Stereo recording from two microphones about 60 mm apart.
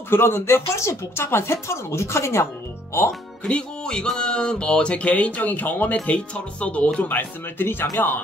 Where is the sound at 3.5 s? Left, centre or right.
Centre.